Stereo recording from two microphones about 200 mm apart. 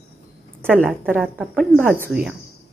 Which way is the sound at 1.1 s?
Centre (ahead or behind).